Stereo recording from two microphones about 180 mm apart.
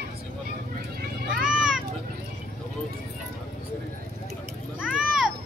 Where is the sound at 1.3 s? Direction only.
5° right (ahead or behind).